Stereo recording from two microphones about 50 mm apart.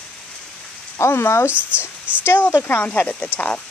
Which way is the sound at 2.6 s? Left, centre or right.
Left.